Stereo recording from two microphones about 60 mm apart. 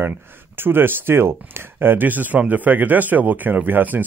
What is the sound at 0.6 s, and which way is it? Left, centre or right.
Speech, right.